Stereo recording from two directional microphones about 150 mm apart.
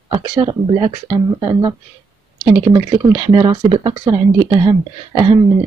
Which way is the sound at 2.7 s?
30° right (ahead or behind).